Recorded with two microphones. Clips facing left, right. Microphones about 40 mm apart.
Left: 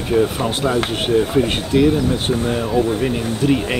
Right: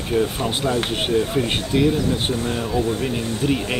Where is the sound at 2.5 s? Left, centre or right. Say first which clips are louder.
Left 4 dB; centre.